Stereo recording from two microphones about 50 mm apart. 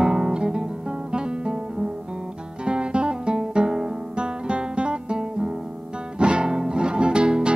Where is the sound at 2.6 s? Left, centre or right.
Centre.